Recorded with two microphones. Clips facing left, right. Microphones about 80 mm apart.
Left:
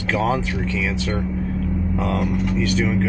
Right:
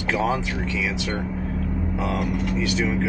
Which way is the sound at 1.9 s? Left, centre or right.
Centre.